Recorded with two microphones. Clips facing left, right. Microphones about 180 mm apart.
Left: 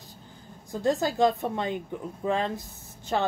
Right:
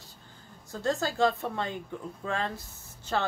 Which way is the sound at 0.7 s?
15° left (ahead or behind).